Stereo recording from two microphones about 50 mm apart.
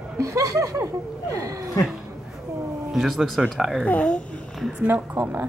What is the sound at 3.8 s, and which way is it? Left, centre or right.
Speech, left.